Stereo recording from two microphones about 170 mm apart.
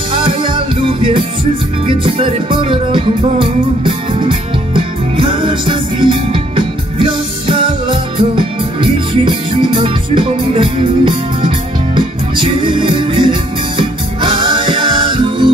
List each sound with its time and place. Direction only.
0.1 s music: 30° right (ahead or behind)